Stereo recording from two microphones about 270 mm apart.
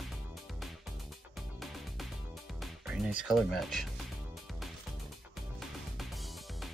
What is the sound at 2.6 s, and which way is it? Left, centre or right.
Music, centre.